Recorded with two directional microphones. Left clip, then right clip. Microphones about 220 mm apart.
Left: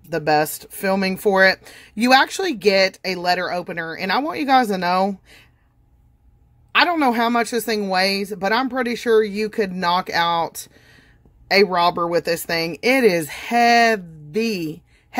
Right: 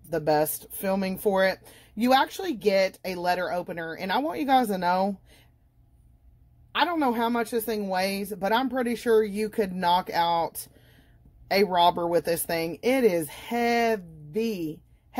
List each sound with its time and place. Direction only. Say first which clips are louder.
0.1 s speech: left 5 dB; 20° left (ahead or behind)
6.7 s a woman's voice: left 8 dB; 25° left (ahead or behind)